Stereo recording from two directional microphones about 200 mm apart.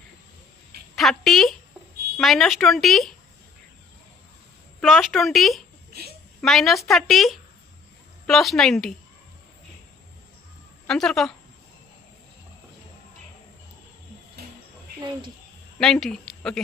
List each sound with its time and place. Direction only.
0.9 s a woman's voice: centre (ahead or behind)
4.7 s speech: centre (ahead or behind)
5.9 s a sound: 50° right (ahead or behind)
6.4 s speech: centre (ahead or behind)
10.9 s speech: centre (ahead or behind)
15.8 s a woman's voice: centre (ahead or behind)